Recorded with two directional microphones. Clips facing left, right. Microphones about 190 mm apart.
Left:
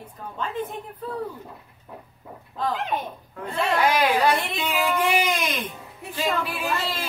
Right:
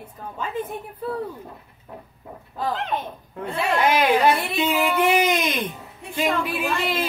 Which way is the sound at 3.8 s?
25° right (ahead or behind).